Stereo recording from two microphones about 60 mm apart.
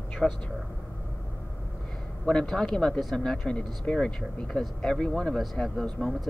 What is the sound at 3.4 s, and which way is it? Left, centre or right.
Speech, centre.